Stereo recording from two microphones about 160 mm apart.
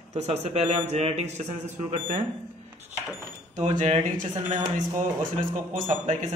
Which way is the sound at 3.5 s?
45° right (ahead or behind).